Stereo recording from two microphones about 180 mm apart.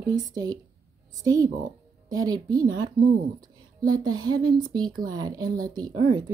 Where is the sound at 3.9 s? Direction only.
25° right (ahead or behind).